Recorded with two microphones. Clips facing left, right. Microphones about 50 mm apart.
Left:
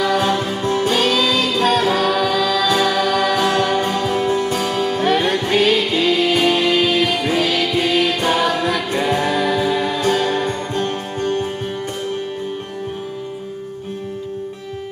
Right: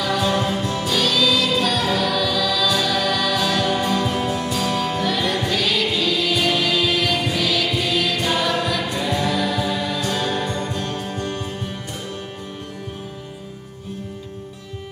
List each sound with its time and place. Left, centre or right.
0.0 s music: left